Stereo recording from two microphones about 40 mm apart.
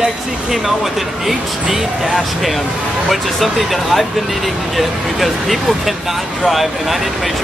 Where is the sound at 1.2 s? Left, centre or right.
Centre.